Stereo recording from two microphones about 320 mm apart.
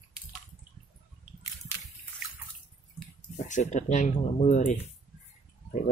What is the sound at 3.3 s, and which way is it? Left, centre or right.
Speech, left.